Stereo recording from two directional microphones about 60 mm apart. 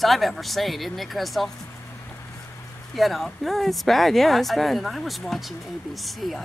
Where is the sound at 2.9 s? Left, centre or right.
Centre.